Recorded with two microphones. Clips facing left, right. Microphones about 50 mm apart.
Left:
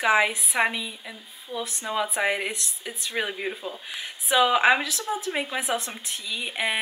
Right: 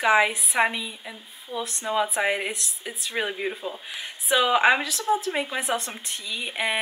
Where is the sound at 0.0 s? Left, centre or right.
Centre.